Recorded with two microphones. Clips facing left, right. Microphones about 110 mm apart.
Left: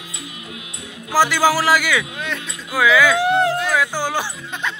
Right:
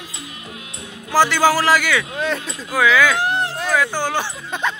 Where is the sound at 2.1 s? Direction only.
35° right (ahead or behind).